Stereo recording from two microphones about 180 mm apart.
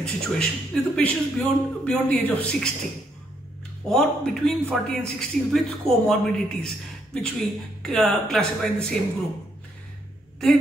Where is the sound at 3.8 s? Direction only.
5° left (ahead or behind).